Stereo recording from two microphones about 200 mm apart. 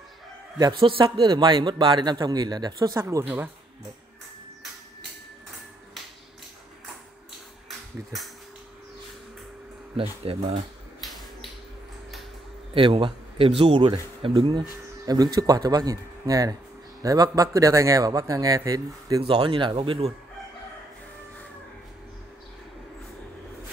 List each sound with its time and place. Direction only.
0.6 s a man's voice: 25° right (ahead or behind)
9.9 s a man's voice: 30° right (ahead or behind)
11.0 s typewriter: centre (ahead or behind)
12.7 s a man's voice: 25° right (ahead or behind)